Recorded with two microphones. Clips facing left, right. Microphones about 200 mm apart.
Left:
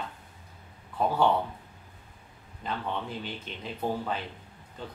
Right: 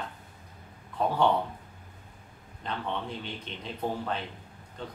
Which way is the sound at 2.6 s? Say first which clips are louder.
Even; 5° left (ahead or behind).